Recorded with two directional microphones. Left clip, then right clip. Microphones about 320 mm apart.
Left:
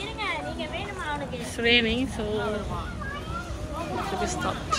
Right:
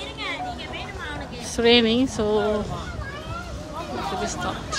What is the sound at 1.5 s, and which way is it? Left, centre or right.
Speech, centre.